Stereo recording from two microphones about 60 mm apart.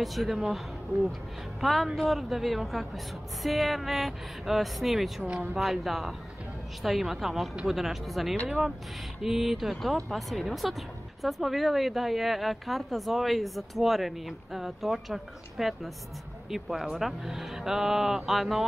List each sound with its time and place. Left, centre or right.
0.0 s speech: centre
1.6 s speech: centre
5.2 s speech: right
5.6 s speech: centre